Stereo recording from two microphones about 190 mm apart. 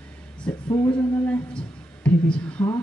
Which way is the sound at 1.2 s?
5° left (ahead or behind).